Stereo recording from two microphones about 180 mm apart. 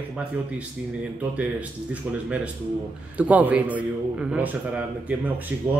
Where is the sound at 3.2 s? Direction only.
10° right (ahead or behind).